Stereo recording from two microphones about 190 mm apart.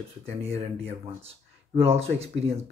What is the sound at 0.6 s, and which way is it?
Speech, 30° right (ahead or behind).